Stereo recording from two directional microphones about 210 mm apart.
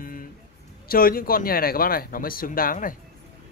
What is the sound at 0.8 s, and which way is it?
Speech, 45° left (ahead or behind).